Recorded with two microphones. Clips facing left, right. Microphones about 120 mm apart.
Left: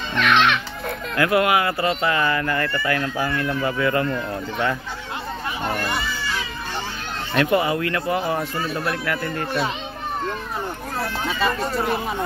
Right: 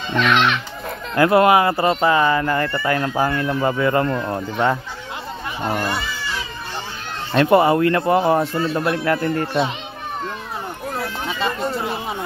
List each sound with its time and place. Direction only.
1.1 s speech: 30° right (ahead or behind)
3.3 s speech: 30° right (ahead or behind)
7.3 s speech: 40° right (ahead or behind); by 9.7 s 25° right (ahead or behind)
11.2 s speech: 20° right (ahead or behind)